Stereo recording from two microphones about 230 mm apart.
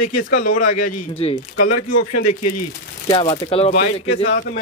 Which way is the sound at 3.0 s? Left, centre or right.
Left.